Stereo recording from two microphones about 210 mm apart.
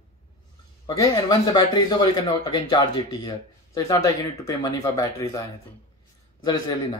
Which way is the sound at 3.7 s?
15° left (ahead or behind).